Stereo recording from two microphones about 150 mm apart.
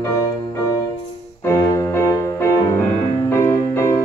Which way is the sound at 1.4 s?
20° left (ahead or behind).